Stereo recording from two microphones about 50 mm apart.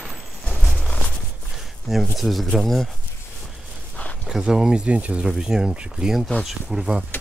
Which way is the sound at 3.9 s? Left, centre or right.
Left.